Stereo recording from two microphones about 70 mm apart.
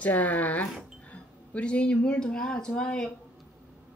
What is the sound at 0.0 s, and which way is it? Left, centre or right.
Speech, left.